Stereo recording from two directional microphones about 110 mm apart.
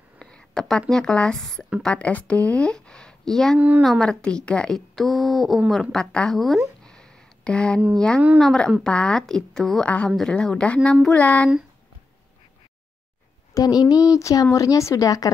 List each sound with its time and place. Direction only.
0.2 s speech: 5° left (ahead or behind)
3.5 s speech: 15° right (ahead or behind)
3.8 s a woman's voice: 5° left (ahead or behind)
6.8 s a sound: 5° left (ahead or behind)
7.9 s a woman's voice: 10° left (ahead or behind)
13.6 s speech: 35° left (ahead or behind)